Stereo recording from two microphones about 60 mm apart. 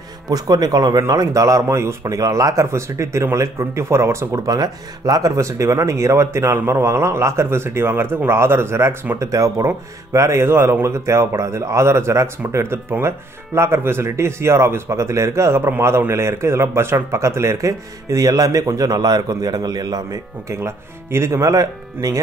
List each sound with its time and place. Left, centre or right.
0.3 s speech: right
4.4 s speech: right
9.1 s speech: right
20.6 s speech: right